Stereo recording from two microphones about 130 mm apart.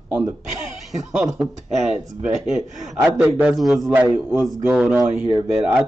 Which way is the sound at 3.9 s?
10° right (ahead or behind).